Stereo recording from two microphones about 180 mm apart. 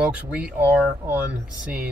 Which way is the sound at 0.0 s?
5° right (ahead or behind).